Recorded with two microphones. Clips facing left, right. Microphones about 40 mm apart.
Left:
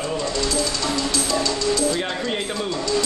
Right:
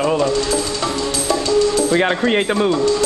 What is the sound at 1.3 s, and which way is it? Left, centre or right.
Music, right.